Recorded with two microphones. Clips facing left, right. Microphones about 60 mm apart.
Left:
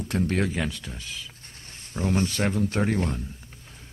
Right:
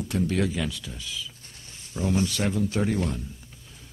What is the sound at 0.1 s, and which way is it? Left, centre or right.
Speech, left.